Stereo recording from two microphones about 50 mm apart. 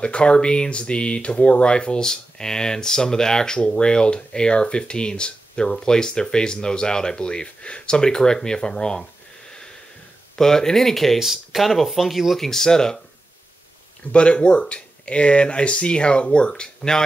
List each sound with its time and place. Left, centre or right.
0.0 s speech: left
10.3 s speech: centre
11.1 s speech: centre
12.4 s speech: centre
14.1 s speech: left